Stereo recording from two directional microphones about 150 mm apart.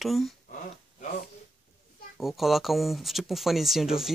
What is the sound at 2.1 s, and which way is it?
Speech, centre (ahead or behind).